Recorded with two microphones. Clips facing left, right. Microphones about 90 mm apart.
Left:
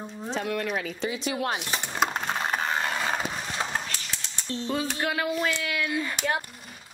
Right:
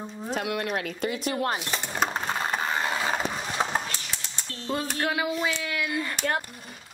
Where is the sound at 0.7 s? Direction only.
60° right (ahead or behind).